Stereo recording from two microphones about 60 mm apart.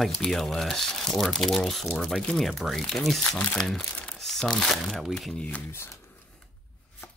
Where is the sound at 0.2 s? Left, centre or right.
Centre.